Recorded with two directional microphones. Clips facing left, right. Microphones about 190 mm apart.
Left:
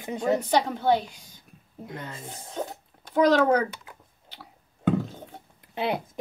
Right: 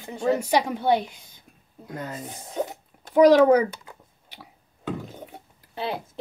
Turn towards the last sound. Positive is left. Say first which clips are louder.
# left 2 dB
turn(degrees=20)  # may be behind; listen again after turning